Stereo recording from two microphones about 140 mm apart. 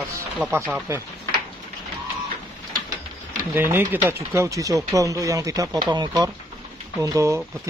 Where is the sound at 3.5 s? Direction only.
15° right (ahead or behind).